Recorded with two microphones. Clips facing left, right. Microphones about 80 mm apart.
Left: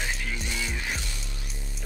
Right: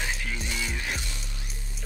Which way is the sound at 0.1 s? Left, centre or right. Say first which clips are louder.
Even; centre.